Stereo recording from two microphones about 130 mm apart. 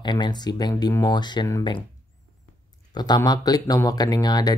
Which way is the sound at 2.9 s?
30° left (ahead or behind).